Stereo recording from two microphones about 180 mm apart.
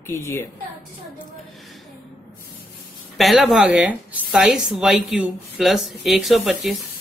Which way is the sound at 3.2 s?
Centre (ahead or behind).